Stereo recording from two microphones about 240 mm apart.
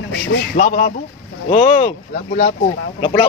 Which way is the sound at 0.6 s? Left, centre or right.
Left.